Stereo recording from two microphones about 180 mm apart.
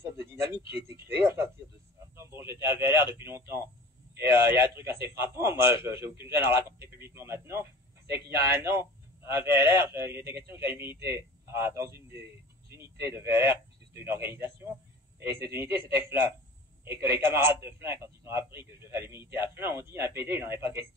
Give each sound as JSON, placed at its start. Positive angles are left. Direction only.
{"t": 0.0, "sound": "a sound", "side_deg": -15}
{"t": 0.6, "sound": "speech", "side_deg": 25}
{"t": 1.2, "sound": "a man's voice", "side_deg": -15}